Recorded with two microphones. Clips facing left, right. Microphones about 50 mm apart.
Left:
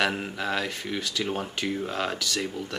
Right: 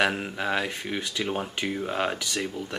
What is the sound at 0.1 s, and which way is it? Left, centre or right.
Speech, centre.